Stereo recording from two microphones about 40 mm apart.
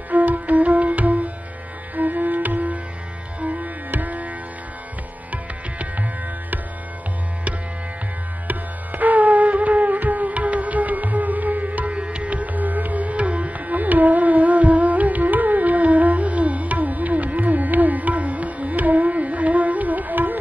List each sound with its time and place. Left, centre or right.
0.1 s music: right
5.3 s music: right
8.5 s music: right
11.9 s music: right